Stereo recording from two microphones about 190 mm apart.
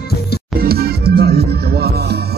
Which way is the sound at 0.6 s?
55° right (ahead or behind).